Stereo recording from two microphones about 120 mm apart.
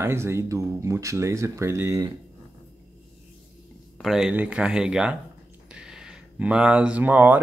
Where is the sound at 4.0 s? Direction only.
5° right (ahead or behind).